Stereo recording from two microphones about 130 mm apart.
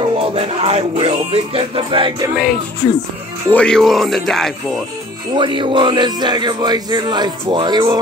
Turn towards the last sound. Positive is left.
turn(degrees=-40)  # may be behind; listen again after turning